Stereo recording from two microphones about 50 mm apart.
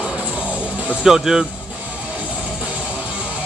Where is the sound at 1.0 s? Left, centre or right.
Centre.